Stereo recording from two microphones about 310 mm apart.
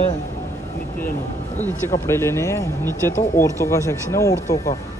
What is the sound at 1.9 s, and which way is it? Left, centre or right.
Speech, centre.